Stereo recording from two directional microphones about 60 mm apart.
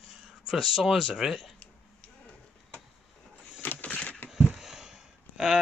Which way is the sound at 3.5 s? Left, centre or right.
Left.